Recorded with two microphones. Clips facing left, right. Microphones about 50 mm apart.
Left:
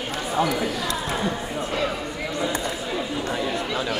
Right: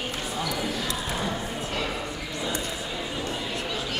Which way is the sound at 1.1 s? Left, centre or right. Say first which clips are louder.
Left 3 dB; left.